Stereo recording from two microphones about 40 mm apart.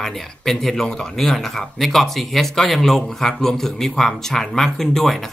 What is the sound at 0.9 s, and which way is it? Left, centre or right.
Speech, left.